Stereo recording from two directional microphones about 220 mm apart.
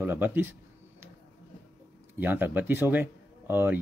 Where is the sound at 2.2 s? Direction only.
10° right (ahead or behind).